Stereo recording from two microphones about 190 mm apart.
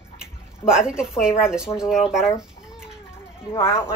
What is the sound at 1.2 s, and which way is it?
A woman's voice, 5° right (ahead or behind).